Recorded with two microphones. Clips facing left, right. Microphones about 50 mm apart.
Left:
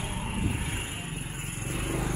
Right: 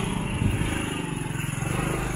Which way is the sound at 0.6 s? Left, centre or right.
Right.